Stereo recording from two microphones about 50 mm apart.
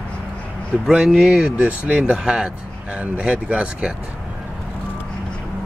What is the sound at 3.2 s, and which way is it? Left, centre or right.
Speech, right.